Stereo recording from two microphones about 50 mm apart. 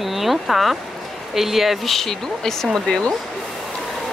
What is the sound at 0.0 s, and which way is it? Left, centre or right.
Speech, centre.